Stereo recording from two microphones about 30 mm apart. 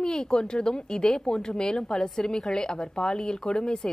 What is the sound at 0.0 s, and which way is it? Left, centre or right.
A woman's voice, left.